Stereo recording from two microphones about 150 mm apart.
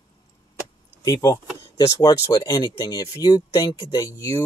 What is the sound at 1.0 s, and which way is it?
Speech, 25° left (ahead or behind).